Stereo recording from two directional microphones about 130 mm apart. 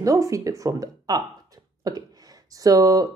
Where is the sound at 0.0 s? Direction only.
25° right (ahead or behind).